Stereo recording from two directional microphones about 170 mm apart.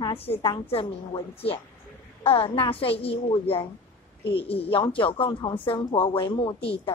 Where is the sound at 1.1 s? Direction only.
35° left (ahead or behind).